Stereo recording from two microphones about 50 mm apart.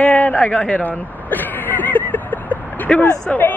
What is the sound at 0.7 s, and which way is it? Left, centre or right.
Vehicle, left.